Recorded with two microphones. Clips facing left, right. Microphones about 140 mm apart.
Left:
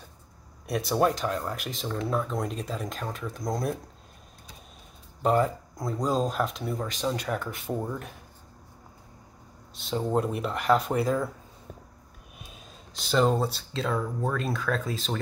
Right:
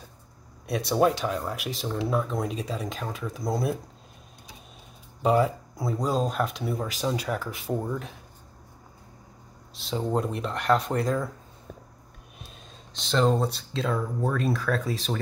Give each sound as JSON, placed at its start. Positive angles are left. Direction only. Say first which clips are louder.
{"t": 0.7, "sound": "speech", "louder": "right 2 dB", "side_deg": 0}
{"t": 5.2, "sound": "speech", "louder": "right 1 dB", "side_deg": -5}
{"t": 9.8, "sound": "speech", "louder": "left 1 dB", "side_deg": 0}
{"t": 12.9, "sound": "speech", "louder": "even", "side_deg": 5}